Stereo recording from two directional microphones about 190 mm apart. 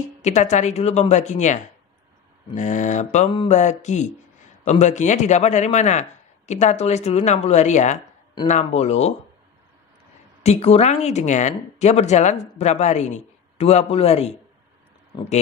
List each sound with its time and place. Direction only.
0.2 s speech: 40° left (ahead or behind)
10.4 s speech: 35° left (ahead or behind)